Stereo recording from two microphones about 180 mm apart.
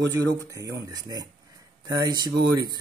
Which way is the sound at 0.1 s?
15° right (ahead or behind).